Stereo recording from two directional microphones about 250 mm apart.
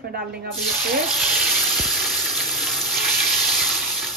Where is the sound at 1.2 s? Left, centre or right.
Centre.